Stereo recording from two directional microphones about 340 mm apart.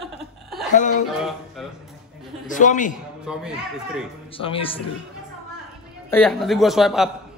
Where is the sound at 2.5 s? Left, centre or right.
Left.